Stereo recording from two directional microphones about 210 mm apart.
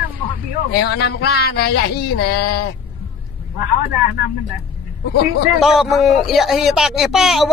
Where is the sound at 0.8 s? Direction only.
50° left (ahead or behind).